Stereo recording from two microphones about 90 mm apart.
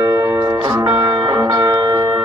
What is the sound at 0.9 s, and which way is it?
Music, 45° right (ahead or behind).